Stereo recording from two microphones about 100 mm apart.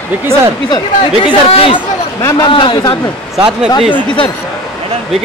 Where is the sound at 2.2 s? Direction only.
30° left (ahead or behind).